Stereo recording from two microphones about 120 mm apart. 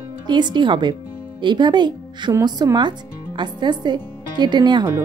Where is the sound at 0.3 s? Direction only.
40° right (ahead or behind).